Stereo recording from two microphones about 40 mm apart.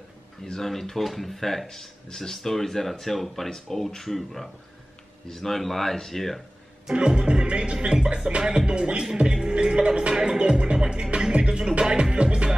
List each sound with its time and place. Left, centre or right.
0.7 s speech: centre
7.0 s music: right